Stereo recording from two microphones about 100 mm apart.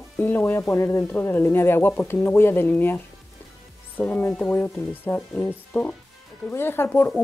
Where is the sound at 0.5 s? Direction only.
30° left (ahead or behind).